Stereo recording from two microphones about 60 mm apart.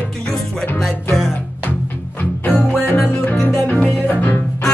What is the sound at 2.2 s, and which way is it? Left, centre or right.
Music, left.